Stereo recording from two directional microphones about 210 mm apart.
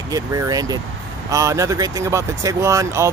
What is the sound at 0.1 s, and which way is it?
Speech, 15° right (ahead or behind).